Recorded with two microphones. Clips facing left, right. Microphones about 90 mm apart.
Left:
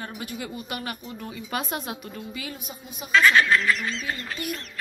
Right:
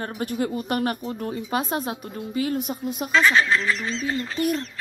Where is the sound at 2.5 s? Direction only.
65° right (ahead or behind).